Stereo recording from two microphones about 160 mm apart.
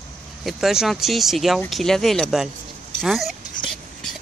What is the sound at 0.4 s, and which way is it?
Speech, centre (ahead or behind).